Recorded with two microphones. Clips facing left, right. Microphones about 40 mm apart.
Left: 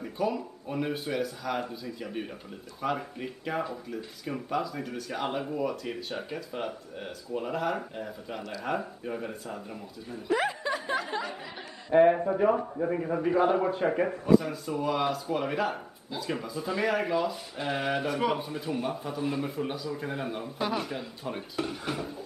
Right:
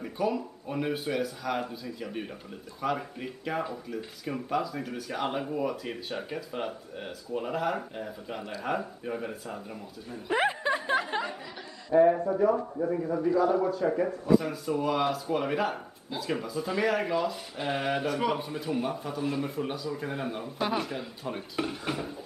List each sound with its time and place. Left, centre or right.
0.0 s speech: centre
10.3 s speech: right
13.1 s a man's voice: left
13.4 s speech: left
14.4 s speech: centre
21.5 s speech: centre